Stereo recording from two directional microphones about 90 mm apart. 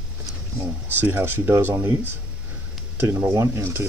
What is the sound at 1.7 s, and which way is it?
Speech, 35° right (ahead or behind).